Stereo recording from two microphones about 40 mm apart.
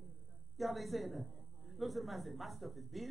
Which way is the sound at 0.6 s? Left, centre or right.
Centre.